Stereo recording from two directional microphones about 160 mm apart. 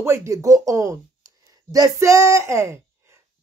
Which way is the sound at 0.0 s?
15° right (ahead or behind).